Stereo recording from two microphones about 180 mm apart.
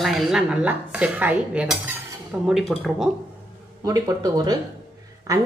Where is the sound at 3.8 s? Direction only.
20° right (ahead or behind).